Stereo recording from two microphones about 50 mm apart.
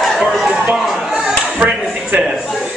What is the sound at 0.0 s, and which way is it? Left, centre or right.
Chatter, centre.